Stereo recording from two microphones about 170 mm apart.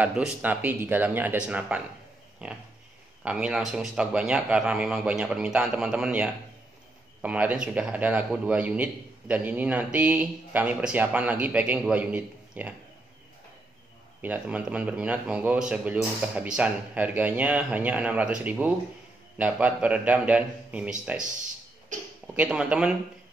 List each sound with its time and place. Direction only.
0.0 s a man's voice: 5° right (ahead or behind)
14.2 s a man's voice: 10° right (ahead or behind)
21.9 s speech: 45° right (ahead or behind)
22.3 s a man's voice: 5° right (ahead or behind)